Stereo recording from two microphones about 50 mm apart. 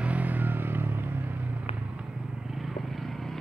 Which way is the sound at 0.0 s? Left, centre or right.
Right.